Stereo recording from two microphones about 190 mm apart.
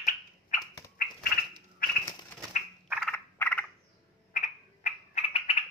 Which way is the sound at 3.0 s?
10° left (ahead or behind).